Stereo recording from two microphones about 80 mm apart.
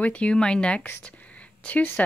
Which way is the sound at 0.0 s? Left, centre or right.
Centre.